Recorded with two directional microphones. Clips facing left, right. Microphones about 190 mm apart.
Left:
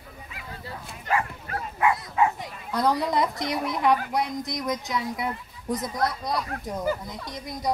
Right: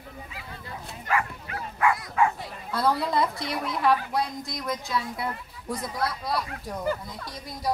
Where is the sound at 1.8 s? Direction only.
20° left (ahead or behind).